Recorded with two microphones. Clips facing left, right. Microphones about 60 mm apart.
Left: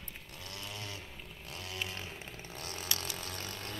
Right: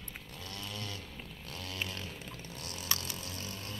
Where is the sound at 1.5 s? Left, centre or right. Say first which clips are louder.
Right 1 dB; centre; by 2.9 s left.